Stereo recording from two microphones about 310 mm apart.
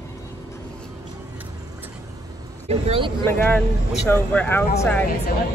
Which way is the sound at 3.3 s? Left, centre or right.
Centre.